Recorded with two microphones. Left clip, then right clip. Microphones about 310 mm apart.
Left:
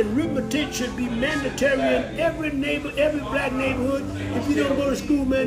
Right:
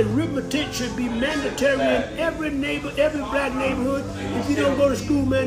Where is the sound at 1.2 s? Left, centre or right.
Centre.